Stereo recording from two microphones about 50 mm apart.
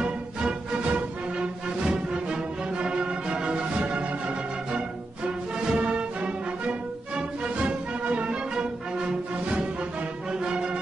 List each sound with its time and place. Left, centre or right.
0.0 s music: centre
5.7 s music: right